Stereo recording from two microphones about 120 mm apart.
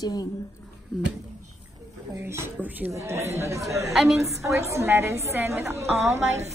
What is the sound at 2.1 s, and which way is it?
A woman's voice, 20° right (ahead or behind).